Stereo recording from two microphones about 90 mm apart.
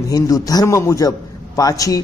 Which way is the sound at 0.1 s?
40° left (ahead or behind).